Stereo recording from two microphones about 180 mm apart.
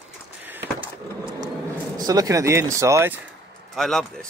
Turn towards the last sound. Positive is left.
turn(degrees=5)  # may be behind; listen again after turning